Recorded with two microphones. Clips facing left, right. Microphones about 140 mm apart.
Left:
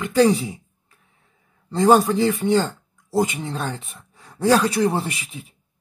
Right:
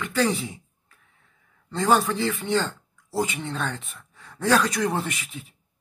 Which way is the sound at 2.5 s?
10° left (ahead or behind).